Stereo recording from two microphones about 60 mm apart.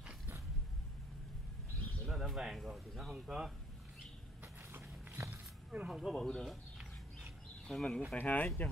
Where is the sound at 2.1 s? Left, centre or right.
Centre.